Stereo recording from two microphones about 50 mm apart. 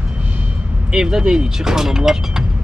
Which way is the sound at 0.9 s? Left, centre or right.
Centre.